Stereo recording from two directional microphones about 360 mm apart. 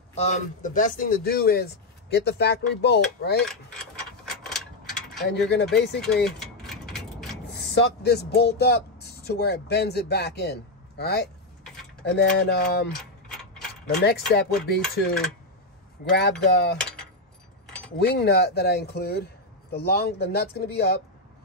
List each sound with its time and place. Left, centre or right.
0.1 s speech: centre
4.4 s mechanisms: centre
5.3 s speech: left
6.4 s a sound: centre
7.4 s speech: left
13.8 s speech: left
16.1 s speech: left
17.9 s speech: left